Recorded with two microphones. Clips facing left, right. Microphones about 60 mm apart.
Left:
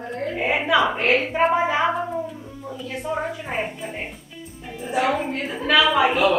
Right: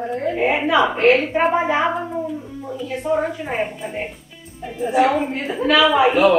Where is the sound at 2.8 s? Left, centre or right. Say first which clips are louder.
Right 6 dB; centre.